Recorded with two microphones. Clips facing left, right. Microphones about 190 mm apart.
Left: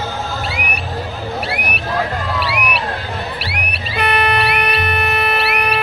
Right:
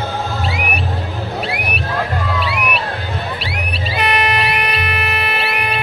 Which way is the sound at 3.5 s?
60° left (ahead or behind).